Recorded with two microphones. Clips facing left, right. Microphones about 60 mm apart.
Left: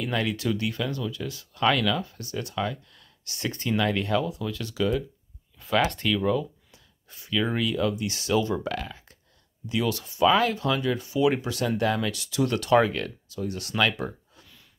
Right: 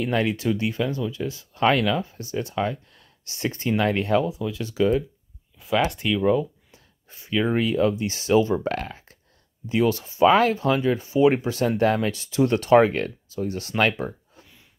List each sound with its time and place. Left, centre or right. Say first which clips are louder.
0.0 s speech: right 4 dB; right
5.6 s speech: right 1 dB; centre
6.1 s speech: right 4 dB; right
14.0 s a sound: right 2 dB; right